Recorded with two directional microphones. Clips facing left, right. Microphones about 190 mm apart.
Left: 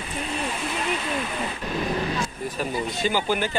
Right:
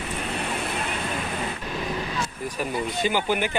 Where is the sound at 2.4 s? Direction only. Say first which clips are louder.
Right 2 dB; 15° right (ahead or behind).